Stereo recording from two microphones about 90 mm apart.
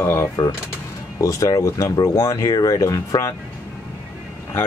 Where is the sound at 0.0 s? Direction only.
25° left (ahead or behind).